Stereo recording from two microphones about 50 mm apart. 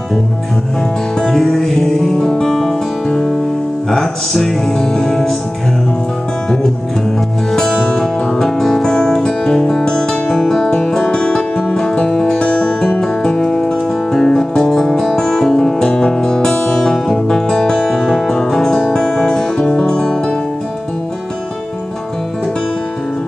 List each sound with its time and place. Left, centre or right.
1.2 s music: centre
3.9 s music: centre
7.5 s music: centre